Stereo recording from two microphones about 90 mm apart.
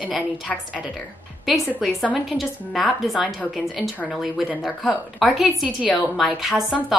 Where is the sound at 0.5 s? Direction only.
5° left (ahead or behind).